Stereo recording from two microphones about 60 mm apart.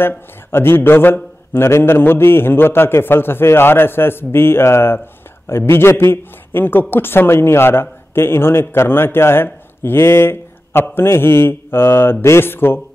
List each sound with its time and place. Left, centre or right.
0.5 s a woman's voice: left